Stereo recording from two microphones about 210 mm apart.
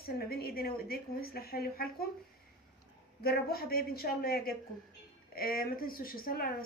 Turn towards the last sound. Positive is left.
turn(degrees=45)  # may be behind; listen again after turning